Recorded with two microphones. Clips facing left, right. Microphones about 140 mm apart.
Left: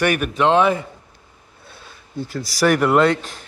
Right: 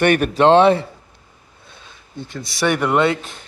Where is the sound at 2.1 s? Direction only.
5° left (ahead or behind).